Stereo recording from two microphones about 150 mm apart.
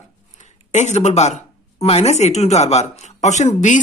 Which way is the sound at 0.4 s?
50° left (ahead or behind).